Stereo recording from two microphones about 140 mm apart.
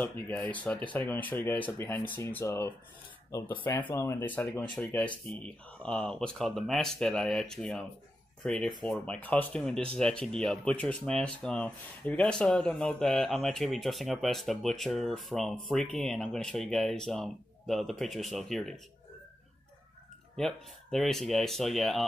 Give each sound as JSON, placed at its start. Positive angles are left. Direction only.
{"t": 0.0, "sound": "speech", "side_deg": 10}
{"t": 20.3, "sound": "speech", "side_deg": 0}